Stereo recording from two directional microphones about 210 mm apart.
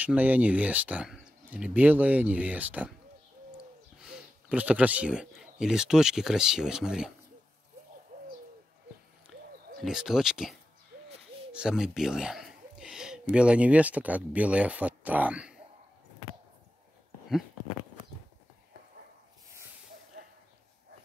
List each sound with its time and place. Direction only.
0.0 s speech: 10° right (ahead or behind)
8.1 s bird: 40° right (ahead or behind)
9.8 s speech: centre (ahead or behind)